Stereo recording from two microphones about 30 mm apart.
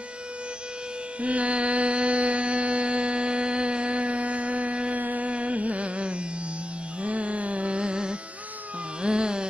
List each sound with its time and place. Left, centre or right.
1.2 s mantra: right
4.9 s music: right
5.3 s carnatic music: right
7.0 s music: right
9.0 s carnatic music: right